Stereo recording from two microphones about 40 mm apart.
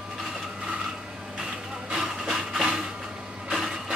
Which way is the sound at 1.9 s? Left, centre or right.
Centre.